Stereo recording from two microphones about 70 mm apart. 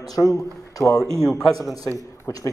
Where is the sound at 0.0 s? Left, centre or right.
Left.